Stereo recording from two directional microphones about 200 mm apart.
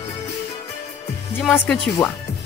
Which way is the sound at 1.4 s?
Centre (ahead or behind).